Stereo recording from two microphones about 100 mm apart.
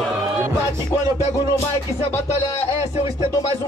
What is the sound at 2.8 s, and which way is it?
Music, 90° left.